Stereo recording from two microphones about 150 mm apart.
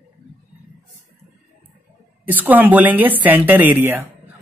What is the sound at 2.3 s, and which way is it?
A woman's voice, 10° right (ahead or behind).